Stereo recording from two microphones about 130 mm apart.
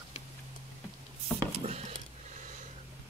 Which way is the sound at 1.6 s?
55° right (ahead or behind).